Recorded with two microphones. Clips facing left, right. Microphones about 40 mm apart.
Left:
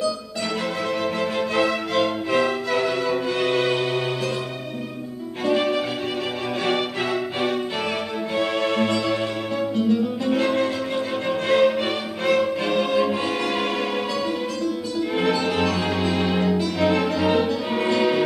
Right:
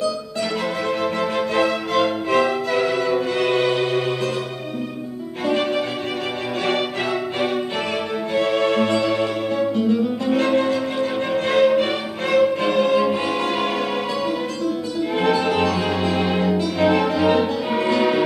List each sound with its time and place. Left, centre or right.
1.0 s music: centre
5.4 s violin: centre
6.6 s music: centre
15.0 s music: centre